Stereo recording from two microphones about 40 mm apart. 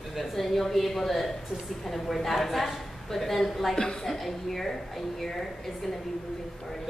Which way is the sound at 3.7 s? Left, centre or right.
Centre.